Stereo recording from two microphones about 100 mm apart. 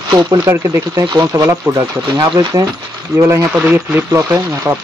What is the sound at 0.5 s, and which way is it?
Speech, 30° right (ahead or behind).